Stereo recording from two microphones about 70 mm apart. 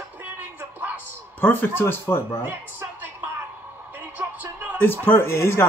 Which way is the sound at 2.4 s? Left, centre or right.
Right.